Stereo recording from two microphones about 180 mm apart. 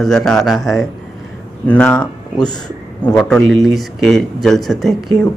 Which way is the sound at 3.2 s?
5° left (ahead or behind).